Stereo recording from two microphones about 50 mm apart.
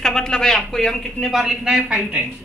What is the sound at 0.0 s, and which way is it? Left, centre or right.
Speech, centre.